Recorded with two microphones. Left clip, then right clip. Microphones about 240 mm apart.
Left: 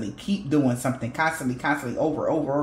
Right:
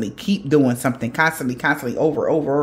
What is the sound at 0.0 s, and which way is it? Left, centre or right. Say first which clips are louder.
Speech: right 6 dB; right.